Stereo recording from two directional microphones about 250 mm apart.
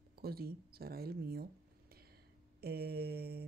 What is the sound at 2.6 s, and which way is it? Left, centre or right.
Mantra, right.